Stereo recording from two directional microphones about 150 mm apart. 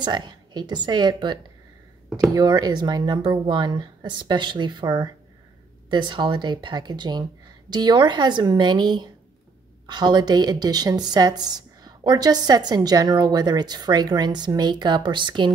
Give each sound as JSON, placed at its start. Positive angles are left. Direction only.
{"t": 0.0, "sound": "a woman's voice", "side_deg": -30}